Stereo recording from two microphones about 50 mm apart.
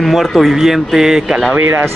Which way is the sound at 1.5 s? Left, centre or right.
Right.